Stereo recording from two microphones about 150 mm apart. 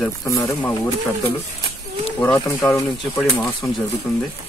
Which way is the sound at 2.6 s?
20° left (ahead or behind).